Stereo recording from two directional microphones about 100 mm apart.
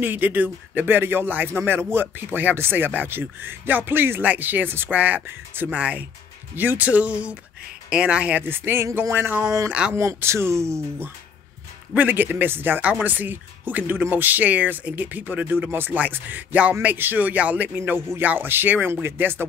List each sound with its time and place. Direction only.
0.0 s speech: 20° right (ahead or behind)
9.7 s speech: 10° right (ahead or behind)
9.9 s speech: 30° right (ahead or behind)
11.9 s speech: 15° right (ahead or behind)